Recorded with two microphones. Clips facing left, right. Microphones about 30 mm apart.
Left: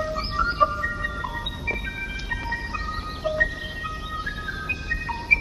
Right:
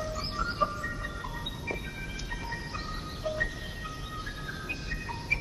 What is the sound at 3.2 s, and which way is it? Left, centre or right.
Music, left.